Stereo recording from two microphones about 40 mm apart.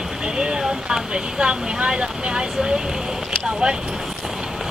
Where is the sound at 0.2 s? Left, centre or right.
Right.